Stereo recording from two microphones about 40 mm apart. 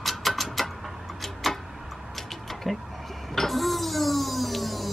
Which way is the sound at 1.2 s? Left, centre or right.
Centre.